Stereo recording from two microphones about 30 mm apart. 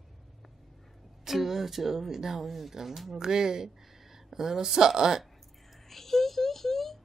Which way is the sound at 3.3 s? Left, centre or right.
Right.